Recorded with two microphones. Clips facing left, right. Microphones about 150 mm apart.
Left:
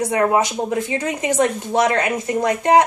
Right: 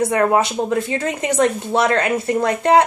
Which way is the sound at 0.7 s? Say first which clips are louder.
Right 1 dB; 15° left (ahead or behind).